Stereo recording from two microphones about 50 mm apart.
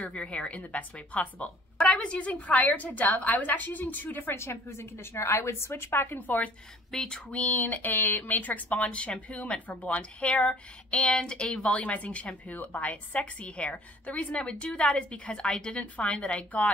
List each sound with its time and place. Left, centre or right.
0.0 s speech: left
4.4 s a woman's voice: left
6.9 s speech: centre
7.2 s speech: left